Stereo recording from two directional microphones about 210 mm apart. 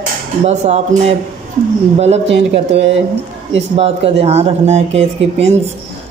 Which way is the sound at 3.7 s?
30° right (ahead or behind).